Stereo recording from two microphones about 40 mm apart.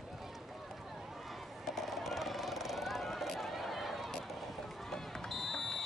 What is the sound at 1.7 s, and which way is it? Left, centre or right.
Vehicle, centre.